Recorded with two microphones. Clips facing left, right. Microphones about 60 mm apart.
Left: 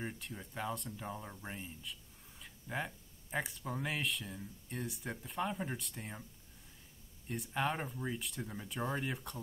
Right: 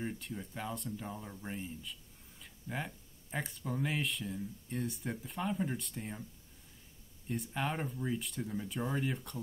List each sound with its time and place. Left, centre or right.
0.2 s speech: centre
7.2 s speech: centre